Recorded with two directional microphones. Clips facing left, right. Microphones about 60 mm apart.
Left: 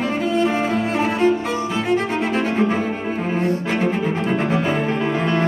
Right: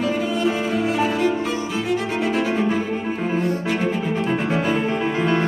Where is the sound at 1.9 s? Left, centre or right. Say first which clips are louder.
Left 2 dB; left.